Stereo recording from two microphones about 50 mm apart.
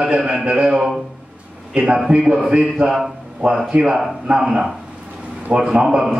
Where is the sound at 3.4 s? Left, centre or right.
Centre.